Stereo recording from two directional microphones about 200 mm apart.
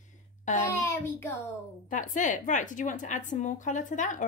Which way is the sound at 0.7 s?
15° left (ahead or behind).